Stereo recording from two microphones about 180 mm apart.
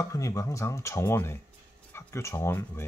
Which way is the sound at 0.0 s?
20° left (ahead or behind).